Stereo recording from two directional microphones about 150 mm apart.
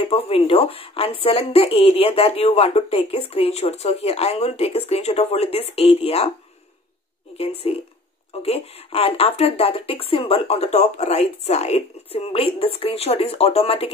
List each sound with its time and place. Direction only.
0.0 s speech: 40° left (ahead or behind)
7.3 s speech: 40° left (ahead or behind)